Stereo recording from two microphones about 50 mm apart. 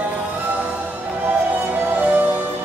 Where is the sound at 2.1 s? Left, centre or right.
Right.